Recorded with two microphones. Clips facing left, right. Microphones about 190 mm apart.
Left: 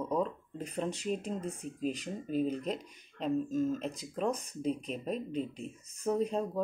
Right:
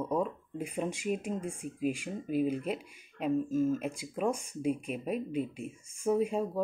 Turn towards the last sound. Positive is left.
turn(degrees=-10)  # may be behind; listen again after turning